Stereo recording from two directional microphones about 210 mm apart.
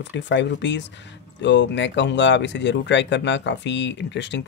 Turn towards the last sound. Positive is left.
turn(degrees=55)  # may be behind; listen again after turning